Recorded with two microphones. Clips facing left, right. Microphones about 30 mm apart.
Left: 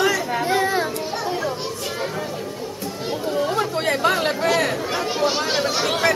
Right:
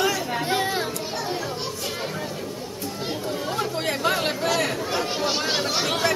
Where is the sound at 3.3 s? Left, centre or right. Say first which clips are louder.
Left 7 dB; centre.